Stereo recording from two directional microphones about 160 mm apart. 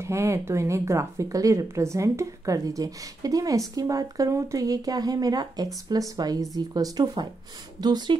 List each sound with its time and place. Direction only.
0.0 s speech: 15° right (ahead or behind)